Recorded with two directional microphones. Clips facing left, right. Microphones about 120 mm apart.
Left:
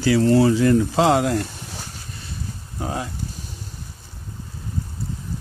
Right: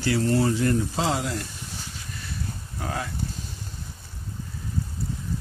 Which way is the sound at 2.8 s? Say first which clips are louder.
Left 4 dB; 25° left (ahead or behind).